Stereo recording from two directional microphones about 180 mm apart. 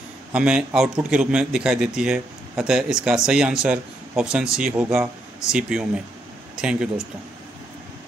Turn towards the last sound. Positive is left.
turn(degrees=-5)  # may be behind; listen again after turning